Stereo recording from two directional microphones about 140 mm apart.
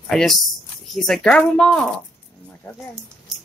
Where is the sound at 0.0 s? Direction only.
Centre (ahead or behind).